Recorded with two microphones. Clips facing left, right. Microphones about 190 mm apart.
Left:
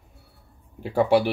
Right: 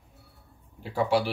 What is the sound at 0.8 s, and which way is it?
Speech, 55° left (ahead or behind).